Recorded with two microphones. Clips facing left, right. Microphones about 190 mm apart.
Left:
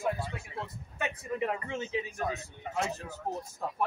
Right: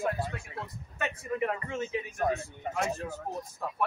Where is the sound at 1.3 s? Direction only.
20° left (ahead or behind).